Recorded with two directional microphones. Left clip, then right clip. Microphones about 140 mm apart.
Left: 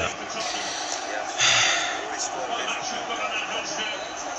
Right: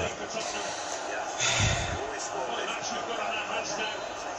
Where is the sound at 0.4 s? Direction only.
15° right (ahead or behind).